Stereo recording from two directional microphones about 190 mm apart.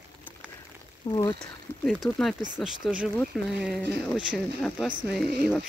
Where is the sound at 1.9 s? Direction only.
Centre (ahead or behind).